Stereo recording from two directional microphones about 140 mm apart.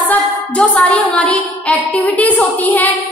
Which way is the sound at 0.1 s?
10° left (ahead or behind).